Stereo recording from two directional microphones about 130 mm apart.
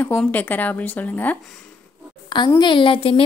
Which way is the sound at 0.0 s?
15° left (ahead or behind).